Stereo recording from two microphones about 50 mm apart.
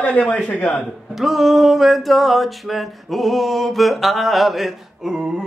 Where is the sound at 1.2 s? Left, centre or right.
Centre.